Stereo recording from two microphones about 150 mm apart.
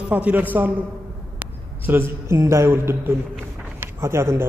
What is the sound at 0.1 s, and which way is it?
A man's voice, 10° right (ahead or behind).